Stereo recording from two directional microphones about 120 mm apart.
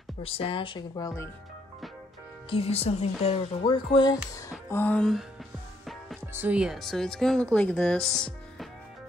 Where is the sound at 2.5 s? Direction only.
55° left (ahead or behind); by 4.5 s 35° left (ahead or behind).